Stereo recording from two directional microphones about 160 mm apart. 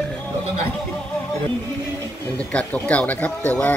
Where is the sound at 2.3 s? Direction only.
10° left (ahead or behind).